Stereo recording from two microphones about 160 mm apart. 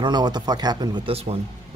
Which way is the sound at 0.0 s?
25° right (ahead or behind).